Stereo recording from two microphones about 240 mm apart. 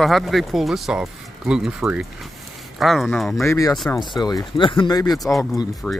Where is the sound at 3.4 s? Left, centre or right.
Centre.